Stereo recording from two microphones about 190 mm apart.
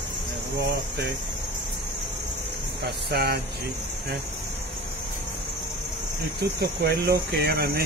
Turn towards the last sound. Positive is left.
turn(degrees=-55)  # may be behind; listen again after turning